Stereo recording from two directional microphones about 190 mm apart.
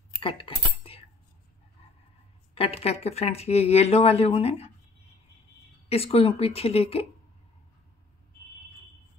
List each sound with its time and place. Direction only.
0.2 s cutlery: 30° left (ahead or behind)
2.5 s speech: 30° left (ahead or behind)
5.9 s speech: 30° left (ahead or behind)